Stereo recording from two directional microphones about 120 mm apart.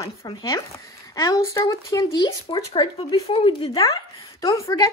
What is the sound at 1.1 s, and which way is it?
A woman's voice, 30° left (ahead or behind).